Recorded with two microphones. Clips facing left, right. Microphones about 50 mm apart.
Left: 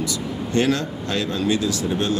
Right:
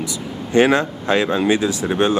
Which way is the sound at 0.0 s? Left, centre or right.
Right.